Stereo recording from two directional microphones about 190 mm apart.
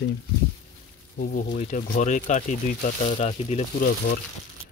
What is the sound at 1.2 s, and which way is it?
Speech, 45° left (ahead or behind).